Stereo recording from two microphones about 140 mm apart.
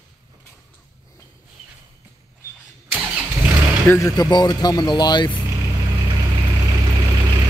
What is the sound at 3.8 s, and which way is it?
Speech, 20° left (ahead or behind).